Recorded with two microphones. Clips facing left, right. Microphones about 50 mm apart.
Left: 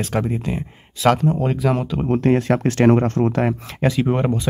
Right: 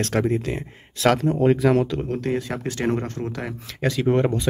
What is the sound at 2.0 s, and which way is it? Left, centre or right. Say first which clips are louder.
Speech: left 7 dB; left.